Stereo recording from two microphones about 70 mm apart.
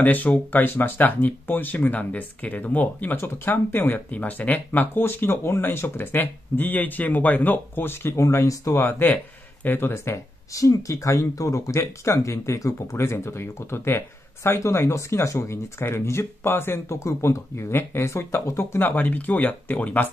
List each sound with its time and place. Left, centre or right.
0.0 s speech: left
8.2 s speech: left
8.8 s a man's voice: left
9.8 s speech: left
18.9 s speech: left